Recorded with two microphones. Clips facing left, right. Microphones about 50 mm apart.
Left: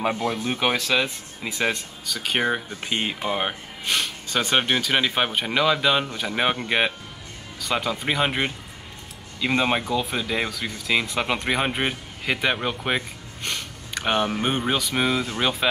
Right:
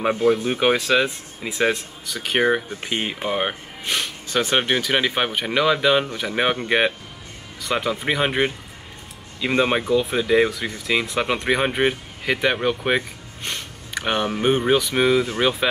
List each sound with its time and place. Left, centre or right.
0.0 s speech: centre
7.6 s speech: centre
13.4 s a sound: right
14.0 s speech: centre